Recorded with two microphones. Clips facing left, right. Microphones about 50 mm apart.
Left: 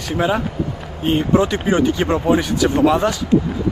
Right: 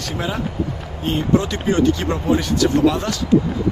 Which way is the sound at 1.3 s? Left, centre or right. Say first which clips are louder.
Left 1 dB; centre.